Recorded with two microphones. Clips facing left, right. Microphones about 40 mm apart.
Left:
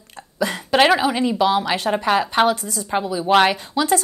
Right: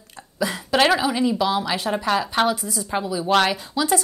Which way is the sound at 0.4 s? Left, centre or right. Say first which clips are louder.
Left 2 dB; left.